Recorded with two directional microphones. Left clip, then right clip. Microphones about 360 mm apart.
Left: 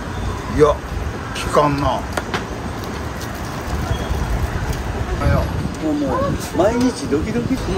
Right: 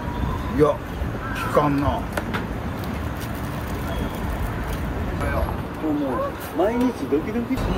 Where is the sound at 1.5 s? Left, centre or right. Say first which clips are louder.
Left 5 dB; left.